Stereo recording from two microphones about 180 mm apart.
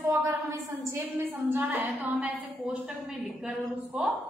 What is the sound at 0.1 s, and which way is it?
A woman's voice, 15° right (ahead or behind).